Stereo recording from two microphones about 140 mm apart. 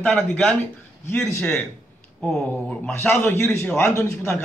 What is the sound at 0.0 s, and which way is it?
Speech, 5° left (ahead or behind).